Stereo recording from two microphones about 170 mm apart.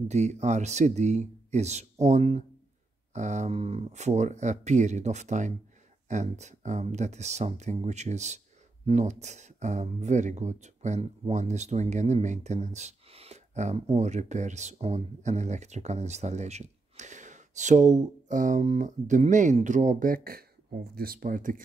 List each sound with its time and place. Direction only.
0.1 s speech: 40° right (ahead or behind)